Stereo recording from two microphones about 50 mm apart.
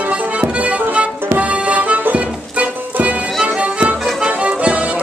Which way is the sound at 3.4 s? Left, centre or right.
Right.